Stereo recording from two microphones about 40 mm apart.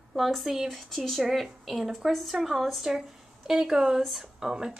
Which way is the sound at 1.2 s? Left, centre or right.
Centre.